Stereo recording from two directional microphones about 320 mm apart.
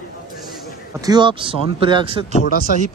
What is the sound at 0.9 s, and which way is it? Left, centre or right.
Speech, centre.